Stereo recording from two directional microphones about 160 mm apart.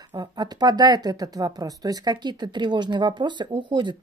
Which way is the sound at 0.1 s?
25° right (ahead or behind).